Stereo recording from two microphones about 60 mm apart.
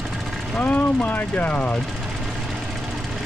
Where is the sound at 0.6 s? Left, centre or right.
Left.